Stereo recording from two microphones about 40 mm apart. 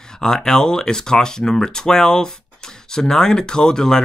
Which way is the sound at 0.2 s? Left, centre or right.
Centre.